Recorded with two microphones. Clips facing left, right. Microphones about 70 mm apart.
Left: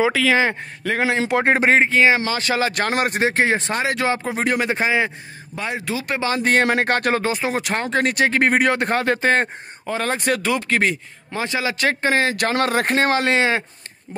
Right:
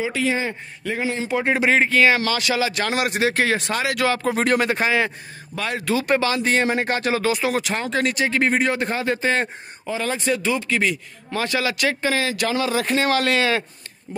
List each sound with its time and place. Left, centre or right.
0.2 s speech: left
1.4 s speech: left
1.8 s speech: left
2.4 s speech: left
4.2 s speech: centre
5.9 s speech: centre
6.3 s speech: left
7.2 s speech: left
7.6 s speech: left
11.3 s speech: left
11.8 s speech: left
13.1 s speech: left